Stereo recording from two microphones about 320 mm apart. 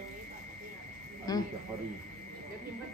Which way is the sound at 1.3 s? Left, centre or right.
Centre.